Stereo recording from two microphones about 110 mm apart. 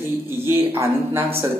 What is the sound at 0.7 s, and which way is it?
Speech, 20° right (ahead or behind).